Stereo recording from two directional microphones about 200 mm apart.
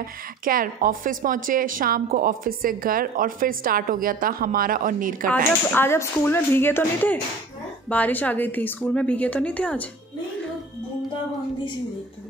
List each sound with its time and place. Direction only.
0.5 s a woman's voice: 45° right (ahead or behind)
5.7 s a woman's voice: 10° left (ahead or behind)